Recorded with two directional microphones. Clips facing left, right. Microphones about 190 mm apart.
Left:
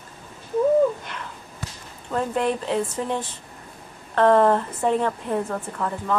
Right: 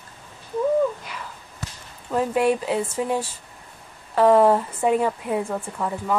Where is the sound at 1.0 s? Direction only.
5° right (ahead or behind).